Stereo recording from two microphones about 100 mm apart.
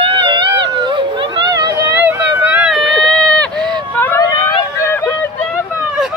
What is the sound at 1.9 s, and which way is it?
Vehicle, 20° right (ahead or behind).